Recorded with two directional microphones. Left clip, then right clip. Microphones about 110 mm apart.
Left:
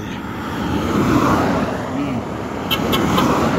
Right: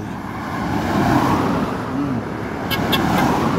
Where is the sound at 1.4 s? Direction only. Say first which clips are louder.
Left 2 dB; 25° left (ahead or behind).